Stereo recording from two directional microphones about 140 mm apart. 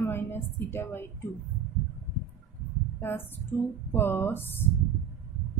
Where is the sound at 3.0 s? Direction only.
15° left (ahead or behind).